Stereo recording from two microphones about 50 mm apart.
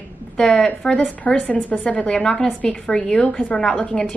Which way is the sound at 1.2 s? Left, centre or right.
Left.